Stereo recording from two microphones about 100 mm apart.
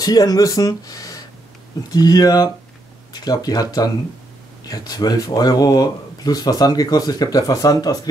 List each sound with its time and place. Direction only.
0.0 s speech: 40° left (ahead or behind)
4.6 s speech: 40° left (ahead or behind)